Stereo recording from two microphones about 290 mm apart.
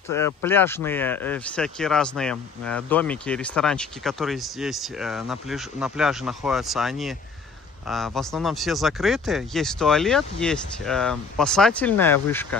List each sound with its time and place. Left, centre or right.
0.1 s speech: centre